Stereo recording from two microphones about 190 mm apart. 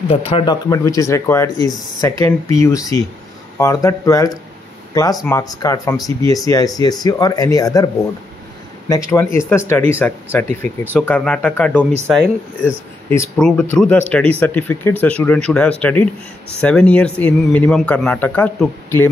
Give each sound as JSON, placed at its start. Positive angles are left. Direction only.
{"t": 0.1, "sound": "speech", "side_deg": 30}
{"t": 0.7, "sound": "speech", "side_deg": 15}
{"t": 12.6, "sound": "speech", "side_deg": 15}
{"t": 13.4, "sound": "speech", "side_deg": 5}